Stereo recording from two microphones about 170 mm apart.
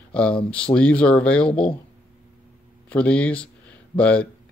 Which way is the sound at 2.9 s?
5° left (ahead or behind).